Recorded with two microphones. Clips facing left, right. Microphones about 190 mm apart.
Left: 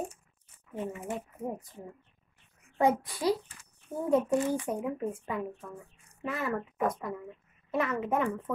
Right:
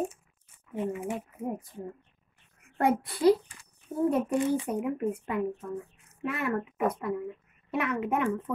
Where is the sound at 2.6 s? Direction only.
60° right (ahead or behind).